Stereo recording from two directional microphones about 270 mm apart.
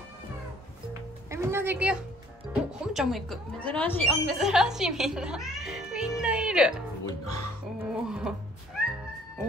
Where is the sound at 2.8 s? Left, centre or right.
Centre.